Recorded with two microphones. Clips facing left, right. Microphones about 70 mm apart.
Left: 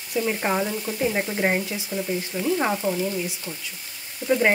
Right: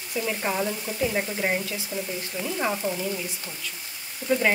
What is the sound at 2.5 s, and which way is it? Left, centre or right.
Speech, left.